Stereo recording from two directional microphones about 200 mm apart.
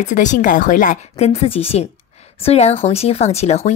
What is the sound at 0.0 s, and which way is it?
Speech, 40° left (ahead or behind).